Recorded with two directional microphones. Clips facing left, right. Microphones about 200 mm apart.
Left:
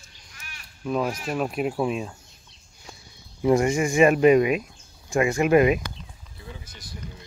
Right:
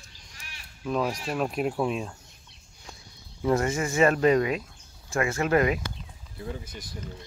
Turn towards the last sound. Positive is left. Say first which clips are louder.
# right 6 dB
turn(degrees=-55)  # may be behind; listen again after turning